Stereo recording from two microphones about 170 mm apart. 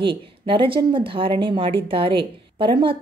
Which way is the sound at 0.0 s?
30° right (ahead or behind).